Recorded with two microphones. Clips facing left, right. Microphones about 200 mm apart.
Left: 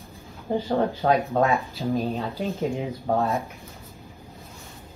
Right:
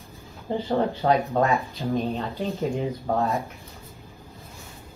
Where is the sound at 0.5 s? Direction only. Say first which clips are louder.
Left 1 dB; 5° left (ahead or behind).